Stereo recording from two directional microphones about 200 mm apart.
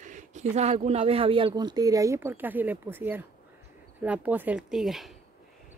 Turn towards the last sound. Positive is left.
turn(degrees=0)  # may be behind; listen again after turning